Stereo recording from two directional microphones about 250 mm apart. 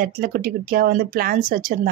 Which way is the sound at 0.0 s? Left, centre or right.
Right.